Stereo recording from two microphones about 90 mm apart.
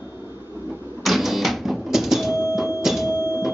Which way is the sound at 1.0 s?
Centre (ahead or behind).